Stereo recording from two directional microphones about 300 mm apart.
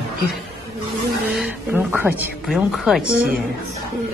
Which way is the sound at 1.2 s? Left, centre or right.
Centre.